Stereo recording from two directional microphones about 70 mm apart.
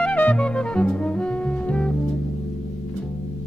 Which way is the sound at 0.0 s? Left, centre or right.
Left.